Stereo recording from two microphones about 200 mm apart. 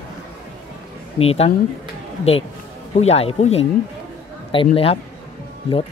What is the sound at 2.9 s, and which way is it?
Speech, 30° left (ahead or behind).